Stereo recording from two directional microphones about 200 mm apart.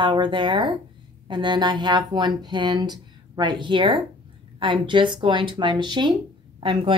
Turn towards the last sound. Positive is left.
turn(degrees=-25)  # may be behind; listen again after turning